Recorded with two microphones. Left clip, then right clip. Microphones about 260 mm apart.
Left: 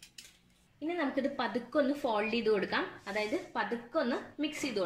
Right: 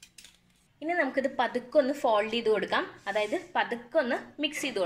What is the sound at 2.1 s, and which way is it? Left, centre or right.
A woman's voice, right.